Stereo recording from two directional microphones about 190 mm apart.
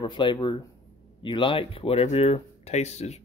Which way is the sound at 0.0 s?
25° left (ahead or behind).